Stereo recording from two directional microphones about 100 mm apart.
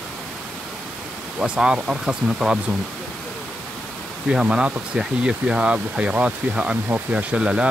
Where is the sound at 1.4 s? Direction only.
10° right (ahead or behind).